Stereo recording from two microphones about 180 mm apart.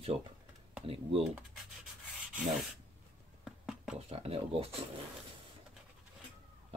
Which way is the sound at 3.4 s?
5° right (ahead or behind).